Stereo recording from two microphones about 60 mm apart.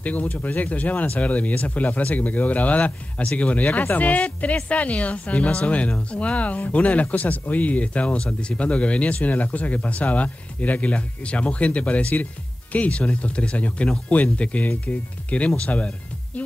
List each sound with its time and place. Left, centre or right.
0.0 s speech: left